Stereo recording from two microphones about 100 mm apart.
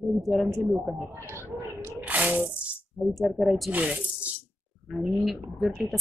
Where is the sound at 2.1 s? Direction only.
15° right (ahead or behind).